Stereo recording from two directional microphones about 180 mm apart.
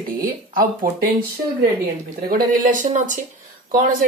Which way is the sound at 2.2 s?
50° right (ahead or behind).